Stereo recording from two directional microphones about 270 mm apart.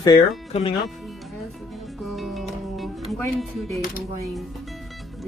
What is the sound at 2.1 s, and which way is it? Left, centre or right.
Music, centre.